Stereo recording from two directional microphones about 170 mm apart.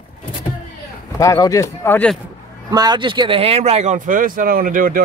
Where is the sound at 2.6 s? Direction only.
25° right (ahead or behind).